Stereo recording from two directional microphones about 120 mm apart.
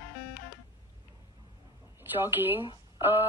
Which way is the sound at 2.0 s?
20° right (ahead or behind).